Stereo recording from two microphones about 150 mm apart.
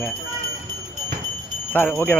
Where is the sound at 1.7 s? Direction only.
15° left (ahead or behind).